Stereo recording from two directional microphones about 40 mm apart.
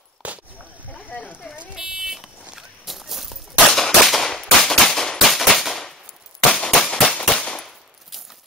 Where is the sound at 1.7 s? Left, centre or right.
Centre.